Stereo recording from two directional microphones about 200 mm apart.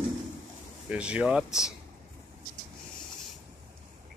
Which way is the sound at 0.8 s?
5° right (ahead or behind).